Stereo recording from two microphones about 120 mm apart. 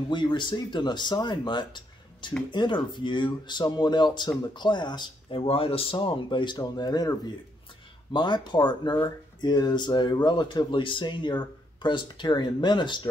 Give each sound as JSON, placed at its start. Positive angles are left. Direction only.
{"t": 0.1, "sound": "speech", "side_deg": 40}